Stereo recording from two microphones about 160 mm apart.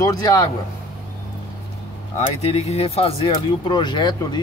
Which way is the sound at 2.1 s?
40° left (ahead or behind).